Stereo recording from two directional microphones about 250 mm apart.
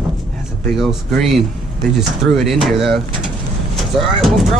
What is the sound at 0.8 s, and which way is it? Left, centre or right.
Speech, centre.